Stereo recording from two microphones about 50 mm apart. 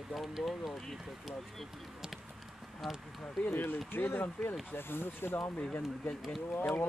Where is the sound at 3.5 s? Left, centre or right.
Left.